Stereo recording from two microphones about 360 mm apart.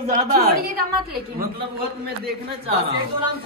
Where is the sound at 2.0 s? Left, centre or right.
Right.